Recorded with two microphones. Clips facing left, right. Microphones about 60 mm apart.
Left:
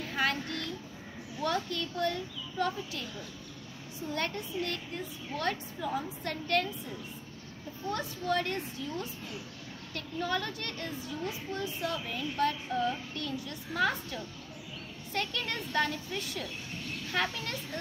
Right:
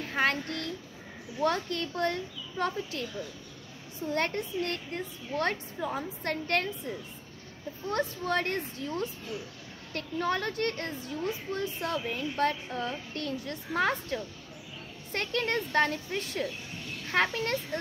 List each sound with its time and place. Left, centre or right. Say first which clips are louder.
0.0 s a child's voice: right 3 dB; right
4.1 s a child's voice: right 4 dB; right
7.9 s a child's voice: right 2 dB; right
9.9 s a child's voice: right 3 dB; right